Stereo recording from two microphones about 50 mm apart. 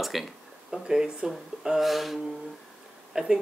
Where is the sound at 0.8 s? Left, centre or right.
Centre.